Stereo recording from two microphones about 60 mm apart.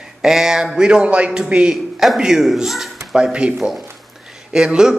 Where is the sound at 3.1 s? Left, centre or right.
Centre.